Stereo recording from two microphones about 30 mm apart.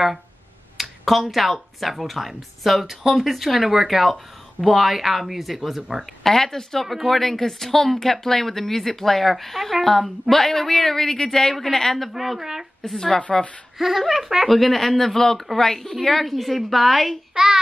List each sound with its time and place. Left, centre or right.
0.7 s speech: centre
6.2 s speech: centre
12.1 s speech: centre
12.8 s speech: centre
13.7 s speech: centre
14.5 s speech: centre
17.3 s child singing: right